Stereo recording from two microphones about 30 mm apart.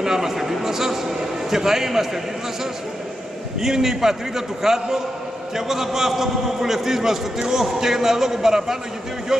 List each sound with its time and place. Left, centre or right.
0.0 s a man's voice: centre
3.6 s a man's voice: centre